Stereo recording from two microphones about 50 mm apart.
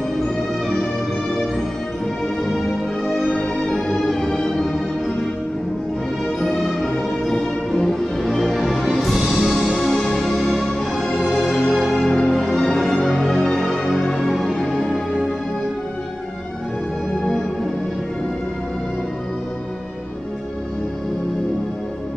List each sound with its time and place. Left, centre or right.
2.4 s music: centre
6.4 s music: centre
9.9 s music: centre
10.3 s music: centre